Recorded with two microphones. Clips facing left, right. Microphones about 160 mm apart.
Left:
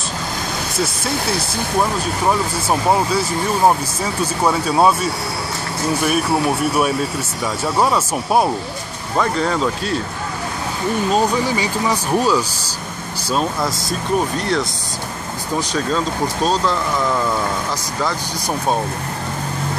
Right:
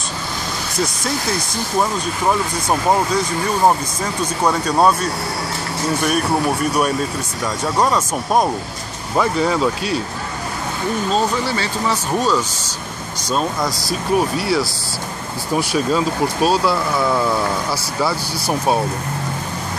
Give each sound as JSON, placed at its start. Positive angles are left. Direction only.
{"t": 2.7, "sound": "speech", "side_deg": 5}
{"t": 9.1, "sound": "speech", "side_deg": -5}
{"t": 11.1, "sound": "speech", "side_deg": 10}